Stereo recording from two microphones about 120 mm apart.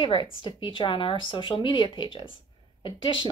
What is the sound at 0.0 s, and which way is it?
A woman's voice, 45° left (ahead or behind).